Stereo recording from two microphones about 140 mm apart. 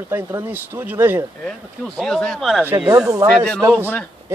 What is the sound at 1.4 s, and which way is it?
Speech, 5° left (ahead or behind).